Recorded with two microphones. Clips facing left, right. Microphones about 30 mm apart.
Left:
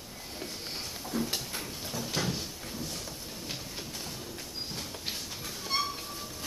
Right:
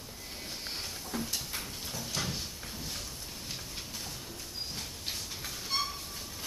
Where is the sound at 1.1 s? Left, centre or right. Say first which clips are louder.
Left 4 dB; centre.